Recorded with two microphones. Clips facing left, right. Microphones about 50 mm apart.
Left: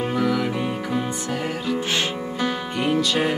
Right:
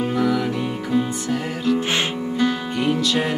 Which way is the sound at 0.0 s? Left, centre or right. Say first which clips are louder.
Right 2 dB; centre.